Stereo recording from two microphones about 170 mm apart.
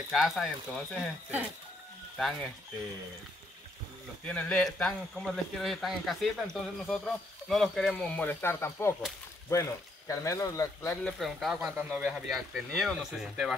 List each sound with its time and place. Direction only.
0.1 s speech: centre (ahead or behind)
2.1 s speech: centre (ahead or behind)
4.3 s speech: 5° left (ahead or behind)
11.1 s speech: centre (ahead or behind)